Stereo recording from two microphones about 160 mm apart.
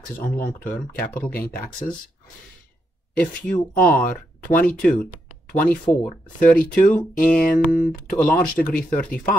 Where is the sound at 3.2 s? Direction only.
10° left (ahead or behind).